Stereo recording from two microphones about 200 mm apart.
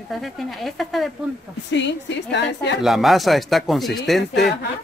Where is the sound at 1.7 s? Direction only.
60° left (ahead or behind).